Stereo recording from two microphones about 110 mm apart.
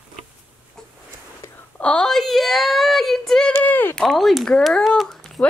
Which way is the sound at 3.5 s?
20° left (ahead or behind).